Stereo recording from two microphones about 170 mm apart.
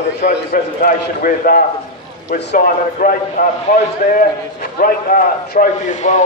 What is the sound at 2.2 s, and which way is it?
A man's voice, 70° left (ahead or behind).